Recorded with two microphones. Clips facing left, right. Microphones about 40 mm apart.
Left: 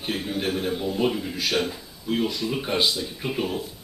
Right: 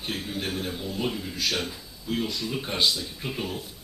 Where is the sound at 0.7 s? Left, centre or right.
Left.